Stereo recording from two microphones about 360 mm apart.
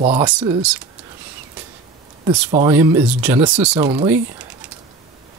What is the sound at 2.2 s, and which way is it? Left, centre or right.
Speech, centre.